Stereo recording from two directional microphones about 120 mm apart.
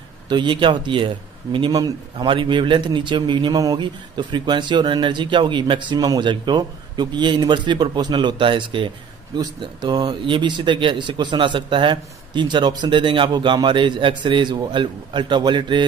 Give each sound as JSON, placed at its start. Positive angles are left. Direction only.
{"t": 0.3, "sound": "a man's voice", "side_deg": -40}
{"t": 9.4, "sound": "a man's voice", "side_deg": -35}
{"t": 10.2, "sound": "a man's voice", "side_deg": -40}